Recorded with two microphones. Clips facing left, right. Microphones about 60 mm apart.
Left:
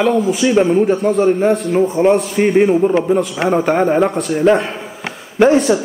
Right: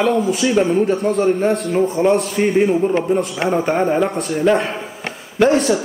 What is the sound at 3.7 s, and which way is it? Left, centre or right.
Speech, centre.